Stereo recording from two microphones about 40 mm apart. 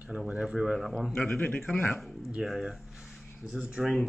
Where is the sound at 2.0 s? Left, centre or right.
Centre.